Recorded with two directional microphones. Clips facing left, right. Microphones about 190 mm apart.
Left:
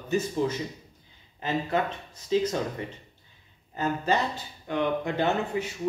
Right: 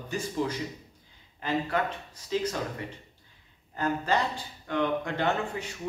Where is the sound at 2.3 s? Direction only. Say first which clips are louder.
Left 5 dB; 20° left (ahead or behind).